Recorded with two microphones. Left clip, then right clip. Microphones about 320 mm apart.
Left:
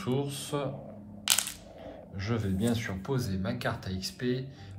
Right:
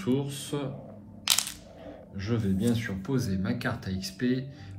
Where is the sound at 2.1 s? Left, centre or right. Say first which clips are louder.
Right 2 dB; left.